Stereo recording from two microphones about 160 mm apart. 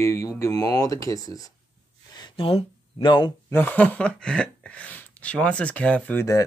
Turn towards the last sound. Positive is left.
turn(degrees=15)  # may be behind; listen again after turning